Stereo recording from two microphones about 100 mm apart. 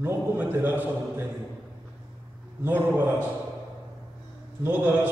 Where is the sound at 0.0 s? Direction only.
20° right (ahead or behind).